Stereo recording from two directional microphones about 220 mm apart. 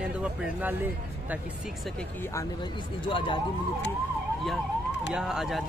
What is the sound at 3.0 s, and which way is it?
Speech, 25° left (ahead or behind).